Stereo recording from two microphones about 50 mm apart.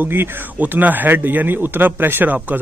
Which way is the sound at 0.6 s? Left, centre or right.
Right.